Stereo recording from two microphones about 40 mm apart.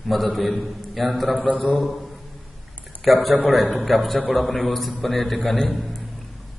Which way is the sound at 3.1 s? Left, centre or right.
Centre.